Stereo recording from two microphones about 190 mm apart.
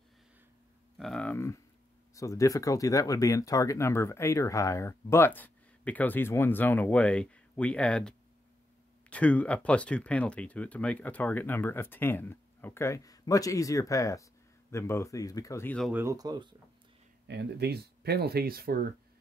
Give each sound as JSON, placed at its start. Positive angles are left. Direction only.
{"t": 0.9, "sound": "speech", "side_deg": 5}
{"t": 15.9, "sound": "speech", "side_deg": -15}
{"t": 17.3, "sound": "speech", "side_deg": -65}